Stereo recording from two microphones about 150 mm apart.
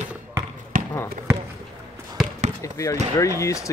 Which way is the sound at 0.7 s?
65° right (ahead or behind).